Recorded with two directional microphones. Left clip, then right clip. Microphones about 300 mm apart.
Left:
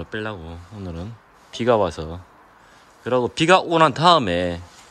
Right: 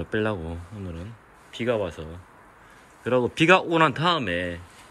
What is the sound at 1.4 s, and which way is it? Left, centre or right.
Speech, centre.